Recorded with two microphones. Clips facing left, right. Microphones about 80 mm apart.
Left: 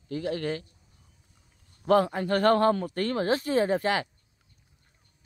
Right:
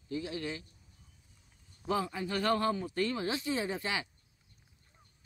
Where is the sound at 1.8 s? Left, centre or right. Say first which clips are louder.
Left 10 dB; left.